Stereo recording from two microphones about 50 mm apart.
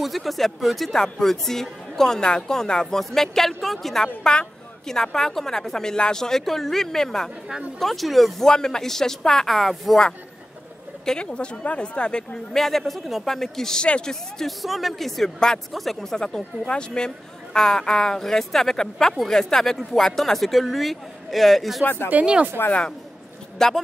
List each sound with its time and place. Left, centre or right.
0.0 s a man's voice: centre
4.2 s speech: centre
11.1 s speech: centre
12.5 s a man's voice: centre
13.8 s speech: centre
14.4 s a man's voice: centre
15.7 s a man's voice: centre
21.8 s speech: left
22.2 s speech: centre
23.6 s speech: centre